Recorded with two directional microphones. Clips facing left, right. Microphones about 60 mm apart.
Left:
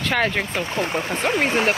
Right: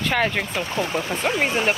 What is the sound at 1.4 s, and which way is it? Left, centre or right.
Speech, left.